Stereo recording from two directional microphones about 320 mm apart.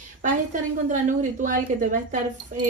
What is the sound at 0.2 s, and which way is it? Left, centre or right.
A woman's voice, right.